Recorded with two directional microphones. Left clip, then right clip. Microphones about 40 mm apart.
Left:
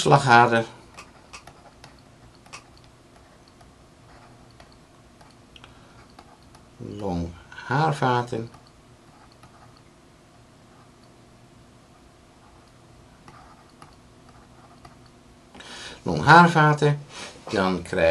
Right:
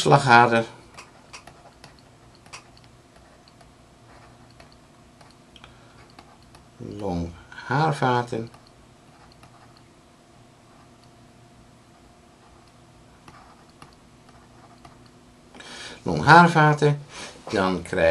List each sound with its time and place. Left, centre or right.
0.0 s speech: right
6.9 s speech: right
15.5 s speech: right